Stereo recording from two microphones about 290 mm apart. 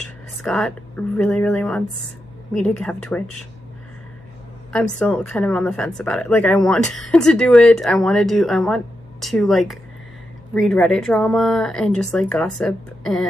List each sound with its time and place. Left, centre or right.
0.4 s a woman's voice: centre
4.7 s a woman's voice: centre